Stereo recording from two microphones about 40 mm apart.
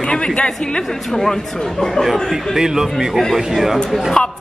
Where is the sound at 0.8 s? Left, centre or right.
Centre.